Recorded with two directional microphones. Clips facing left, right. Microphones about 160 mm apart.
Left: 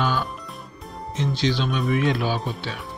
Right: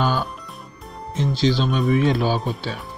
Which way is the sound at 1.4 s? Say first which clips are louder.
Right 5 dB; 35° right (ahead or behind).